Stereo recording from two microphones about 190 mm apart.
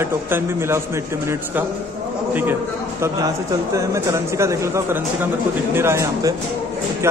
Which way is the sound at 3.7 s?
15° right (ahead or behind).